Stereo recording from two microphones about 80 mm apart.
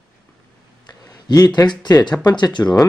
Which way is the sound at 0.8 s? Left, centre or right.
Left.